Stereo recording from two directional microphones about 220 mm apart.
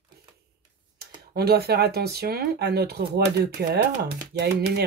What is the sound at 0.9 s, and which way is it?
Speech, 45° right (ahead or behind).